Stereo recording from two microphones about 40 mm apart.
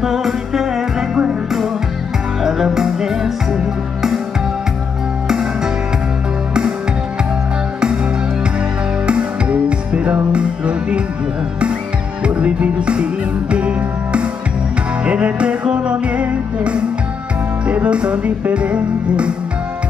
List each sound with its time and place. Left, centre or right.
0.0 s music: centre
2.4 s music: centre
9.7 s music: right
12.3 s music: right